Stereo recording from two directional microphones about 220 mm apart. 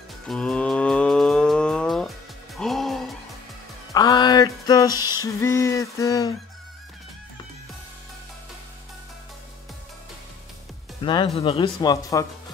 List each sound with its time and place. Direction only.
0.3 s cattle: 5° left (ahead or behind)
3.9 s music: 20° left (ahead or behind)
11.0 s speech: 25° left (ahead or behind)